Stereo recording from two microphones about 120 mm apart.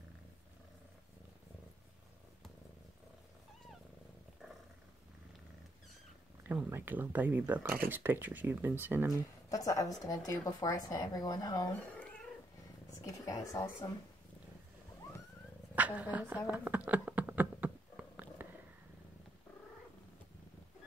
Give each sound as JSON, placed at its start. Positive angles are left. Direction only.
{"t": 6.5, "sound": "speech", "side_deg": -15}
{"t": 9.5, "sound": "speech", "side_deg": 30}
{"t": 11.7, "sound": "cat", "side_deg": 10}
{"t": 13.0, "sound": "speech", "side_deg": 30}
{"t": 15.7, "sound": "a woman's voice", "side_deg": -10}
{"t": 16.4, "sound": "a sound", "side_deg": -10}